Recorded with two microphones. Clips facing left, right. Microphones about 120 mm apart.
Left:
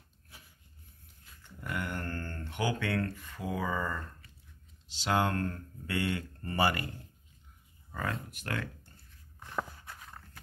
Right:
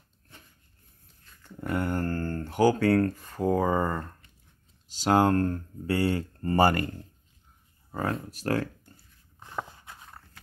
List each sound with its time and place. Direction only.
1.4 s speech: 35° right (ahead or behind)
7.9 s speech: 30° right (ahead or behind)
9.4 s walk: 20° right (ahead or behind)